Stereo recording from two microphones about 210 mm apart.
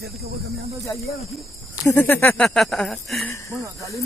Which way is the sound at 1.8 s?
10° left (ahead or behind).